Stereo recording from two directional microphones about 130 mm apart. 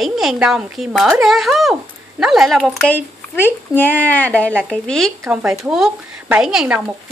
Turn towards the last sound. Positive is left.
turn(degrees=-5)  # may be behind; listen again after turning